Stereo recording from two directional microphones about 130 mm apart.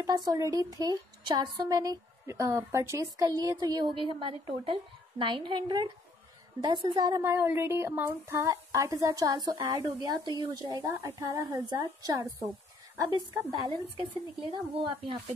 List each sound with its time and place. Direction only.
0.0 s a woman's voice: 25° right (ahead or behind)
7.2 s speech: 15° right (ahead or behind)
13.7 s speech: 45° right (ahead or behind)